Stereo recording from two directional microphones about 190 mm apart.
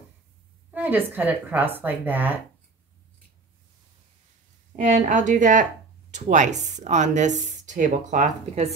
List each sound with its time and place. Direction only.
0.7 s a woman's voice: 10° right (ahead or behind)
4.8 s speech: 40° right (ahead or behind)